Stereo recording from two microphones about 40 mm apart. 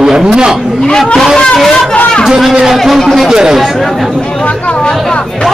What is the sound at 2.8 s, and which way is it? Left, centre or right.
Speech, centre.